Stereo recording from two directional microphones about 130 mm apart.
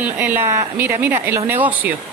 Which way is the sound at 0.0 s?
15° right (ahead or behind).